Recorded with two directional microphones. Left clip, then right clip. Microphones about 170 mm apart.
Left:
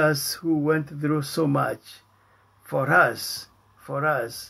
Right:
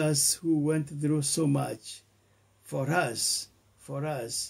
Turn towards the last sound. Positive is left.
turn(degrees=-45)  # may be behind; listen again after turning